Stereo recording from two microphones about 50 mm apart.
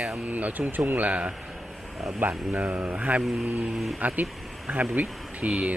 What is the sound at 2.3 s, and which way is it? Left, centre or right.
Speech, right.